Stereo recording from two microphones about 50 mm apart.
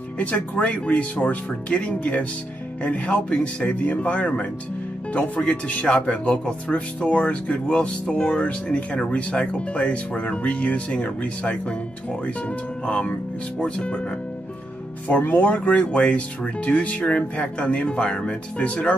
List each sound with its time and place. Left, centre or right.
0.2 s speech: left
5.7 s speech: left
15.0 s speech: left